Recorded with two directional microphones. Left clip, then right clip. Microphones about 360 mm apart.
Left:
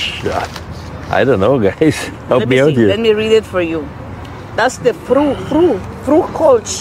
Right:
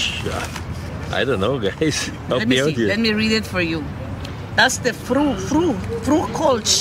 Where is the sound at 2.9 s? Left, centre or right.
Right.